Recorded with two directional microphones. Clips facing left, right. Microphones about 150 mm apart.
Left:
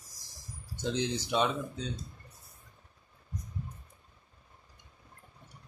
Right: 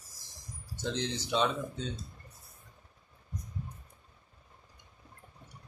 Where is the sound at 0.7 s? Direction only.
10° left (ahead or behind).